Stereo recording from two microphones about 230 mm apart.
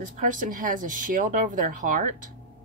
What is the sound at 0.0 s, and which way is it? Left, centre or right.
Speech, right.